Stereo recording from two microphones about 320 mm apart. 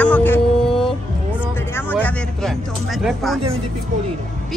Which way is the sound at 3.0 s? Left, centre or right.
Centre.